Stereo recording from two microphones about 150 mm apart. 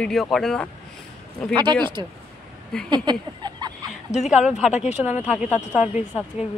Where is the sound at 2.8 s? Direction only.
30° right (ahead or behind).